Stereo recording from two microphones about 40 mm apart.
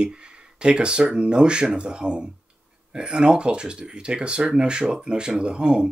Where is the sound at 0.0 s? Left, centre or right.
Right.